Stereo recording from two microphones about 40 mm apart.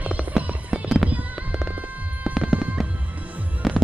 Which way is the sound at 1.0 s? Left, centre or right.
Centre.